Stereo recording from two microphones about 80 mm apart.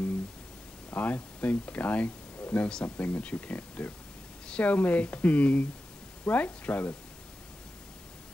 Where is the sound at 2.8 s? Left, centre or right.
Left.